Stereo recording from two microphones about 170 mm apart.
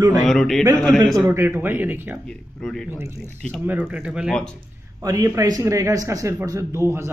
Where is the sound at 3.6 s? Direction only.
10° right (ahead or behind).